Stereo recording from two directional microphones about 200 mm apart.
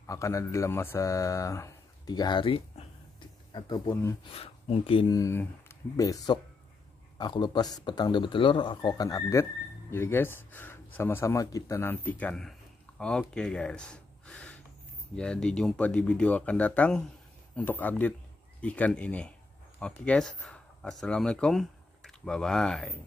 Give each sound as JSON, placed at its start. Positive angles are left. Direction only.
{"t": 0.0, "sound": "speech", "side_deg": 15}
{"t": 4.2, "sound": "speech", "side_deg": 30}